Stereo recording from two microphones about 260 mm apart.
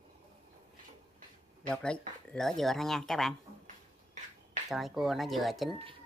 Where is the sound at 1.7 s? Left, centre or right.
Centre.